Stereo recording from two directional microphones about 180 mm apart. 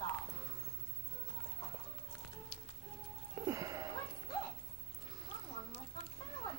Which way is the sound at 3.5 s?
20° right (ahead or behind).